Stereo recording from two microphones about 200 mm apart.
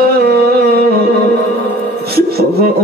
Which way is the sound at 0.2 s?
50° right (ahead or behind).